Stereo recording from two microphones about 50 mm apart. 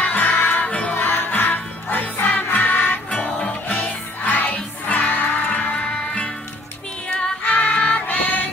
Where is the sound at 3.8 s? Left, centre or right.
Left.